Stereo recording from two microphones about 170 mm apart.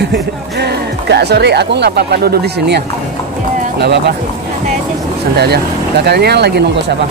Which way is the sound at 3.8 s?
75° right (ahead or behind).